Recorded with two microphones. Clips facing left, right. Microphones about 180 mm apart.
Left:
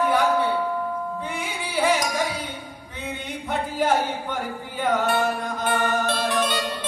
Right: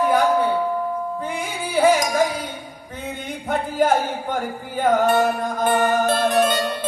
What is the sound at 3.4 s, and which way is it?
Music, 45° right (ahead or behind).